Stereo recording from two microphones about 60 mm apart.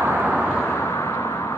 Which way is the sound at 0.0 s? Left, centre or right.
Right.